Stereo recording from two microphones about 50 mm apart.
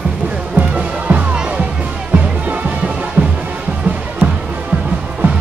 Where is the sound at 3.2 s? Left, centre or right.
Right.